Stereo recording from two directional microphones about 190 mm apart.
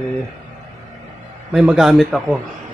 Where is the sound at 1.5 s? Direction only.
Centre (ahead or behind).